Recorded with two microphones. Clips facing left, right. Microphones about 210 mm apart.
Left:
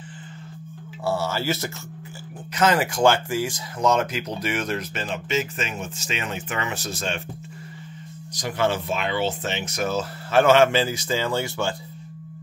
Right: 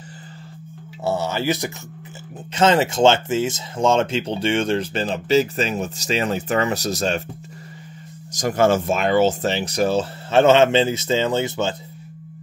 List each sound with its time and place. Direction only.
1.0 s speech: 20° right (ahead or behind); by 7.2 s 40° right (ahead or behind)
8.3 s speech: 45° right (ahead or behind); by 11.7 s 20° right (ahead or behind)